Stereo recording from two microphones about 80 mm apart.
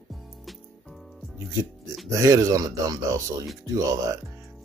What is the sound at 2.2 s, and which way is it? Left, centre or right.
Speech, right.